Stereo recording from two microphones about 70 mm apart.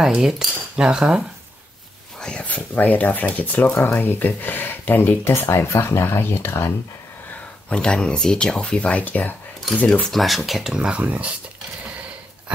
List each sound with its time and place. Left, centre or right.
0.0 s cutlery: centre
2.1 s a sound: centre
2.4 s speech: left
7.7 s speech: centre
10.1 s cutlery: centre